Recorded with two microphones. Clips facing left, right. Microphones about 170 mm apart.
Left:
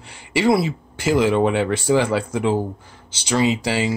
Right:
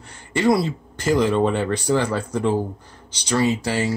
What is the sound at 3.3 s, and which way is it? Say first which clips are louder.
Speech: left 1 dB; 15° left (ahead or behind).